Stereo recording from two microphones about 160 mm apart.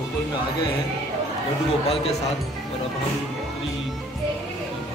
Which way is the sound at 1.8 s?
40° left (ahead or behind).